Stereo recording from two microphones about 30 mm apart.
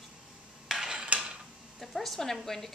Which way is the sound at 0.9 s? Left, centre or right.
Right.